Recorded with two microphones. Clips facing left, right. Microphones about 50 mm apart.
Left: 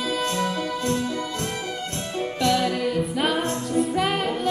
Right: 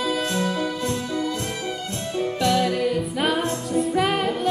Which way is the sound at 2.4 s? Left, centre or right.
Centre.